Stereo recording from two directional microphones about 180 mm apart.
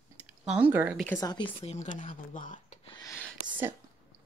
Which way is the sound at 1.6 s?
40° left (ahead or behind).